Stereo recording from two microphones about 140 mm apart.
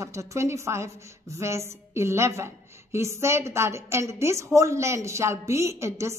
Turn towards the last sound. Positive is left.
turn(degrees=-20)  # may be behind; listen again after turning